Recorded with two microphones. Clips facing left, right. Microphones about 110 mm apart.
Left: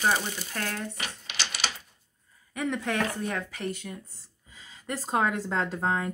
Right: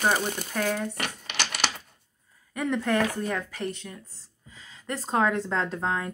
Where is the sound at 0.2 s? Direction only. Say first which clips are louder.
Right 5 dB; 55° right (ahead or behind).